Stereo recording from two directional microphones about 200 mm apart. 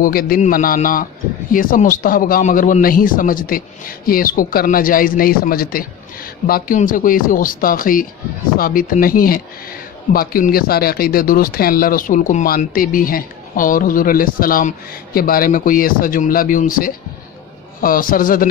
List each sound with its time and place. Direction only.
0.0 s speech: 45° left (ahead or behind)